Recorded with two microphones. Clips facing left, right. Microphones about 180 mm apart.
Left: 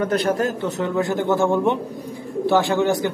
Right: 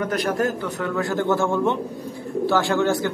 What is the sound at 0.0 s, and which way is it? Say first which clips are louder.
A man's voice: left 2 dB; 25° left (ahead or behind).